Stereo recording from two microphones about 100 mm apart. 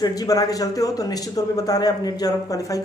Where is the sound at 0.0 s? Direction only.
40° left (ahead or behind).